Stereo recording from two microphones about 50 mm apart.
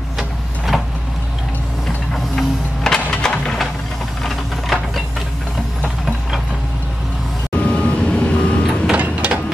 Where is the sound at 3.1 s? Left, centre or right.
Centre.